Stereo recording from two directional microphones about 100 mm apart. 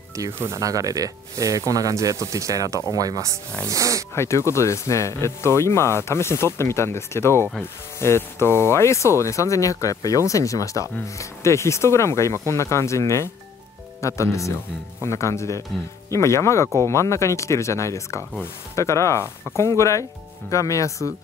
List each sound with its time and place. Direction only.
0.1 s speech: 30° right (ahead or behind)
4.1 s speech: 30° left (ahead or behind)